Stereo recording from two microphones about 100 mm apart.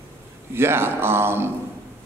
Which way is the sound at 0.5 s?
25° right (ahead or behind).